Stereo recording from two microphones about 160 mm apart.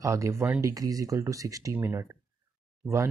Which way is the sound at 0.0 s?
20° right (ahead or behind).